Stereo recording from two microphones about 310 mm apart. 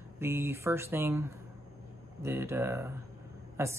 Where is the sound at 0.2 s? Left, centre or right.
Centre.